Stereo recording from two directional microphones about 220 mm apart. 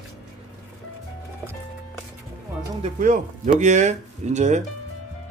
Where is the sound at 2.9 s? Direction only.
35° right (ahead or behind).